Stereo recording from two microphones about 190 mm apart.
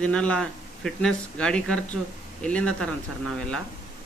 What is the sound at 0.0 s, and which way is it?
A man's voice, 5° left (ahead or behind).